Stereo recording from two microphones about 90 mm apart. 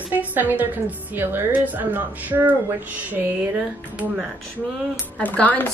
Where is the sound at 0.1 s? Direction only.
20° right (ahead or behind).